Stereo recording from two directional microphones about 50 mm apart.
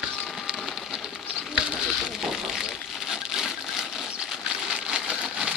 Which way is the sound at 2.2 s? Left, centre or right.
Centre.